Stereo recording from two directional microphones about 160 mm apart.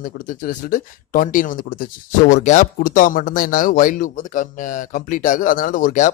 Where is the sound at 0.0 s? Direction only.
55° left (ahead or behind).